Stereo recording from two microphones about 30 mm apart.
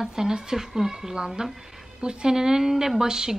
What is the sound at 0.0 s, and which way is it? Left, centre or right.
A woman's voice, centre.